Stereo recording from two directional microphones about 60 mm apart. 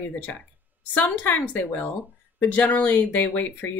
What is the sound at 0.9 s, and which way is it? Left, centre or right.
Speech, left.